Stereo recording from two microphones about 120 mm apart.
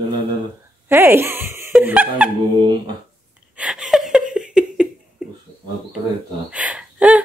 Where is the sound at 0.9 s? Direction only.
20° right (ahead or behind).